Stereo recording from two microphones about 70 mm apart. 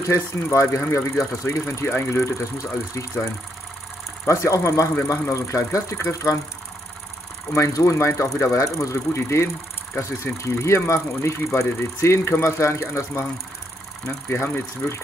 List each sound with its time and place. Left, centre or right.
0.0 s speech: left
4.3 s speech: left
7.5 s speech: left
14.3 s speech: left